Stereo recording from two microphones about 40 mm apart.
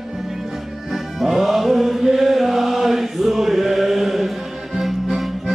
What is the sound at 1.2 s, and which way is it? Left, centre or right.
Chant, centre.